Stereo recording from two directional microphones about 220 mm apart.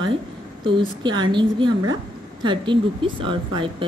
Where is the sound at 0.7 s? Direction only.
20° right (ahead or behind).